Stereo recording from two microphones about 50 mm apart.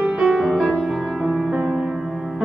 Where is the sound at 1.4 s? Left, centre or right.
Right.